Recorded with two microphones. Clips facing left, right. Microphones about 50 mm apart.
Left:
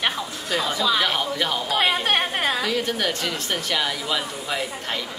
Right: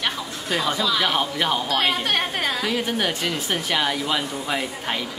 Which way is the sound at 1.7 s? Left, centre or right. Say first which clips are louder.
Left 1 dB; centre.